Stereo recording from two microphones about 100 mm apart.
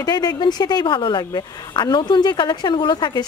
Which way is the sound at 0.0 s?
40° left (ahead or behind).